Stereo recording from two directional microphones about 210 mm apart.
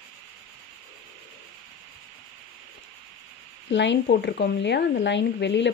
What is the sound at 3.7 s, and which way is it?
Speech, 60° left (ahead or behind).